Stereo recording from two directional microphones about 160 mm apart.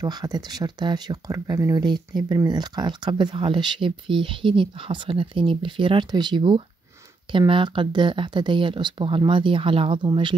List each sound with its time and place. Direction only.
0.0 s speech: 25° right (ahead or behind)